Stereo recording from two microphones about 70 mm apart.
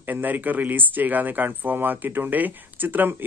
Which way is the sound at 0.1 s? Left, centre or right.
Right.